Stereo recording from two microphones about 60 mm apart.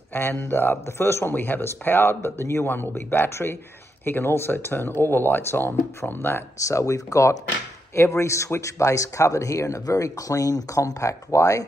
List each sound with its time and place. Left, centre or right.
0.1 s speech: left
1.3 s speech: left
6.6 s speech: left
7.9 s speech: left